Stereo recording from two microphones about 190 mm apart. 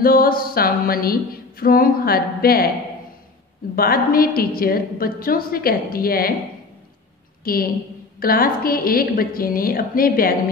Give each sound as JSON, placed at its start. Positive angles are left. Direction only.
{"t": 0.0, "sound": "a woman's voice", "side_deg": 50}
{"t": 3.7, "sound": "a woman's voice", "side_deg": 50}
{"t": 7.4, "sound": "a woman's voice", "side_deg": 50}